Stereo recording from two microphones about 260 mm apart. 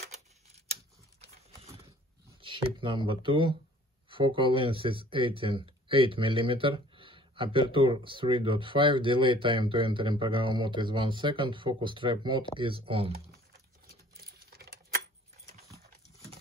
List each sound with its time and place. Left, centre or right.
2.2 s speech: centre
14.5 s typing: right